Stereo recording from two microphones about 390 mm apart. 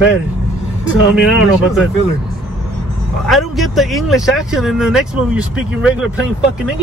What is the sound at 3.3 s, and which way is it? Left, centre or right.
Speech, centre.